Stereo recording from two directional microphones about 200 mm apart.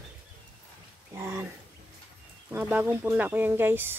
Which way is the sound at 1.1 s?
10° right (ahead or behind).